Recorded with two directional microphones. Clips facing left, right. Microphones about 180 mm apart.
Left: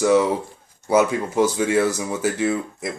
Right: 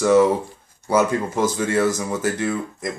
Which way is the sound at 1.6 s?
10° left (ahead or behind).